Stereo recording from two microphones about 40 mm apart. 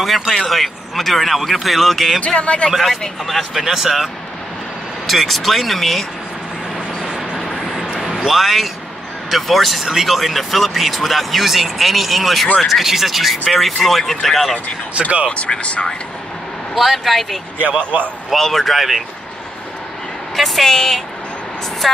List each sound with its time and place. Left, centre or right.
0.4 s speech: centre
2.1 s speech: left
3.5 s speech: centre
7.2 s vehicle: centre
8.1 s a sound: centre
8.4 s speech: centre
15.0 s speech: right
15.2 s speech: left
16.7 s speech: centre
20.3 s speech: centre
20.7 s speech: centre